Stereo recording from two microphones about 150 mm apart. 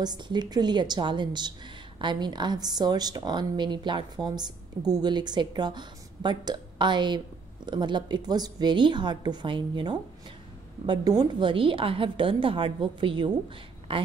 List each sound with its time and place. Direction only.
0.0 s a woman's voice: 30° right (ahead or behind)